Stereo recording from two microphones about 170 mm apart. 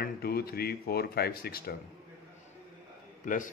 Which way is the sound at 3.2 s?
50° left (ahead or behind).